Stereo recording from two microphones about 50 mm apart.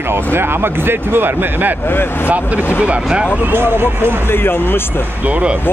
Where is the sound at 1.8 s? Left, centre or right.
Left.